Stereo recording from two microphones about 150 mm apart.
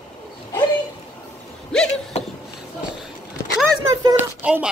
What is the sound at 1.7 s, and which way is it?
Vehicle, 5° left (ahead or behind).